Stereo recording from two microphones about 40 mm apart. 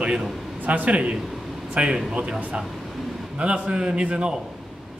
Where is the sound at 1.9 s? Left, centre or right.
Centre.